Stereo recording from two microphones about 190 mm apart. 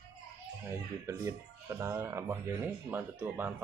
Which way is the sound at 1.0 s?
15° right (ahead or behind).